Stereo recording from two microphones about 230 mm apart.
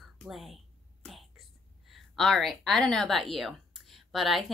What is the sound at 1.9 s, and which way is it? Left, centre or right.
Speech, centre.